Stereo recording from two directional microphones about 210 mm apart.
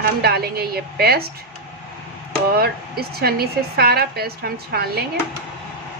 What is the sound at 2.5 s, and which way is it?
Speech, 50° right (ahead or behind).